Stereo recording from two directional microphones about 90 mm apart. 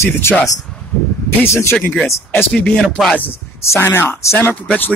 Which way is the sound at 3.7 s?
25° left (ahead or behind).